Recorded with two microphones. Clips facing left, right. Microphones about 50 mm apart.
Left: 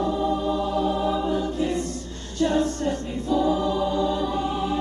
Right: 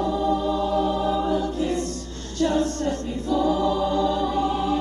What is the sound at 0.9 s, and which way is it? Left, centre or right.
Music, left.